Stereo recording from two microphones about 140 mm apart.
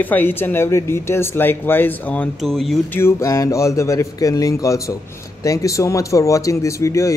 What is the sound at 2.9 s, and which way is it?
Speech, 20° left (ahead or behind).